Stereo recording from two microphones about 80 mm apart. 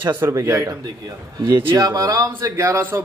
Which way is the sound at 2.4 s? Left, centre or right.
Right.